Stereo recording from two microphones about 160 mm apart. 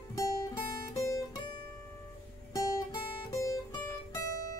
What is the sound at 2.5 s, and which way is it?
Music, 20° left (ahead or behind).